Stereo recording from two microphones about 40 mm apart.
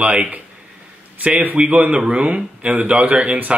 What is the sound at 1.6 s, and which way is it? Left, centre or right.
A man's voice, right.